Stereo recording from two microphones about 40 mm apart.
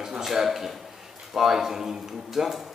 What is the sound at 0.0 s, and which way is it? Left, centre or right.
A man's voice, centre.